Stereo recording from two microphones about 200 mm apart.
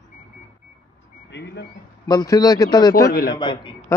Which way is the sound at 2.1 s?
20° left (ahead or behind).